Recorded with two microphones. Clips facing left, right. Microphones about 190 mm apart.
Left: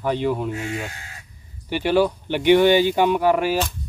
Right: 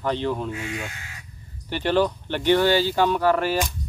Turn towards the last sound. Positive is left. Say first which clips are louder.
# left 2 dB
turn(degrees=10)  # may be behind; listen again after turning